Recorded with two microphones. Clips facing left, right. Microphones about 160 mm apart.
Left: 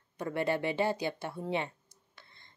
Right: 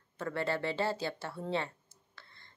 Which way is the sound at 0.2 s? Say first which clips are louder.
Left 3 dB; 15° left (ahead or behind).